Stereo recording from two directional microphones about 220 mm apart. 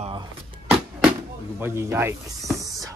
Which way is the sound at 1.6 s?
10° right (ahead or behind).